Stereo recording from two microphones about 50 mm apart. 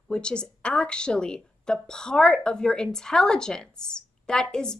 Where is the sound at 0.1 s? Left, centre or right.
Centre.